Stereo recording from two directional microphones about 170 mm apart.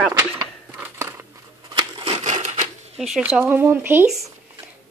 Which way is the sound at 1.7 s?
30° right (ahead or behind).